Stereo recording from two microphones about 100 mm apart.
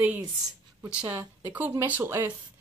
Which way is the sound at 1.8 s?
25° right (ahead or behind).